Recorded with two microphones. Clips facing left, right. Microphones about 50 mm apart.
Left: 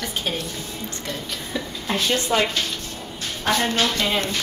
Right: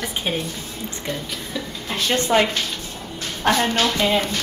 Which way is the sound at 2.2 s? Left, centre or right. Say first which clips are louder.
Right 3 dB; right.